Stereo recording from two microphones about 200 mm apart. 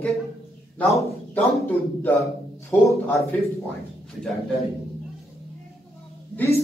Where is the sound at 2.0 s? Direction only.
10° left (ahead or behind).